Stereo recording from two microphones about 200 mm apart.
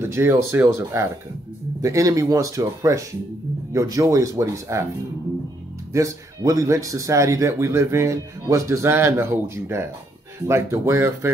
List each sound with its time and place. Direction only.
0.0 s speech: 10° right (ahead or behind)
5.9 s speech: 15° right (ahead or behind)